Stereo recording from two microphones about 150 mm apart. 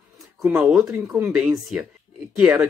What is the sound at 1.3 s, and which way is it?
Speech, 5° right (ahead or behind).